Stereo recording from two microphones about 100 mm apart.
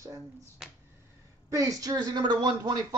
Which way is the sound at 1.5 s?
35° right (ahead or behind).